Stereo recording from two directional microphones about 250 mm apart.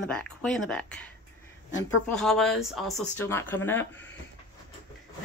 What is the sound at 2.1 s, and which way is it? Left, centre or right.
Speech, centre.